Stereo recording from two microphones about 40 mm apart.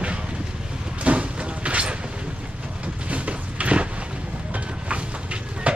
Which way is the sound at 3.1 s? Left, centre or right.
Right.